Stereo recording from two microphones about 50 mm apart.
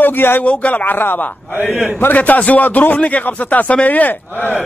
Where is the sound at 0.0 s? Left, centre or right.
Left.